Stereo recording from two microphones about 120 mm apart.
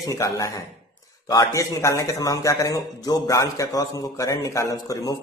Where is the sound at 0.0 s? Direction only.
30° left (ahead or behind).